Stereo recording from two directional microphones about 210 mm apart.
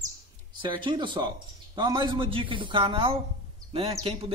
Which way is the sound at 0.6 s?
20° right (ahead or behind).